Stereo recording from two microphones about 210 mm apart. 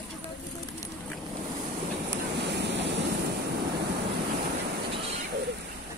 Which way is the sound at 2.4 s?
55° right (ahead or behind).